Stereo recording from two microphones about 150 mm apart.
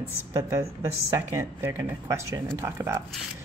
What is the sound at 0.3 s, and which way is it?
Speech, 25° right (ahead or behind).